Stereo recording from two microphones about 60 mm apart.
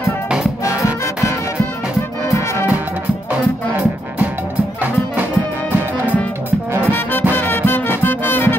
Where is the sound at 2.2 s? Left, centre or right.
Left.